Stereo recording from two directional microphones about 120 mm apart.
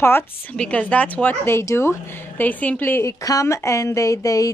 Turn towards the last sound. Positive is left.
turn(degrees=30)  # may be behind; listen again after turning